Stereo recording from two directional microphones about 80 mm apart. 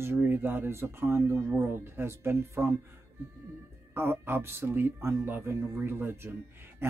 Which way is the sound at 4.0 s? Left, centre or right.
Right.